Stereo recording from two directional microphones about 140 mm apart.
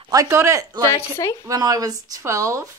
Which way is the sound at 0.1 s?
20° right (ahead or behind).